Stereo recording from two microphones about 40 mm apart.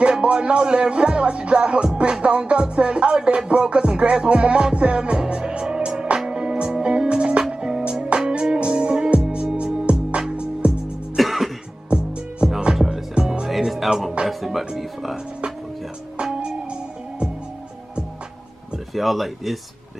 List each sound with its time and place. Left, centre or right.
0.0 s speech: right
2.2 s music: right
11.1 s music: centre
11.9 s music: right
12.7 s music: centre
13.6 s music: centre
18.9 s speech: centre